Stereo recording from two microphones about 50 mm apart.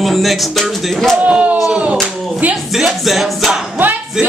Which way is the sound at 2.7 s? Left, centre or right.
Centre.